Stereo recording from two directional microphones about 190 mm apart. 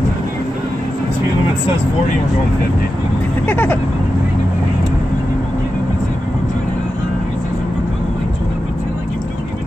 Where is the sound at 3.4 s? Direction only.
10° left (ahead or behind).